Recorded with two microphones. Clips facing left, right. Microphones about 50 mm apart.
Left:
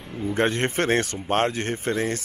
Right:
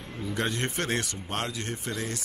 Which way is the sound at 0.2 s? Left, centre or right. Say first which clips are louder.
Left 7 dB; left.